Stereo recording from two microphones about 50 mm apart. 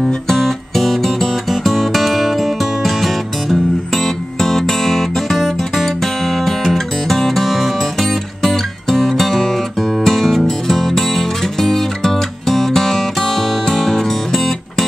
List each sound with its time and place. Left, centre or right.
0.3 s music: centre